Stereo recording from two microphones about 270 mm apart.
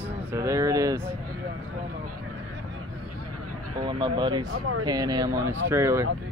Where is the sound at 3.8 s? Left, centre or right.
Centre.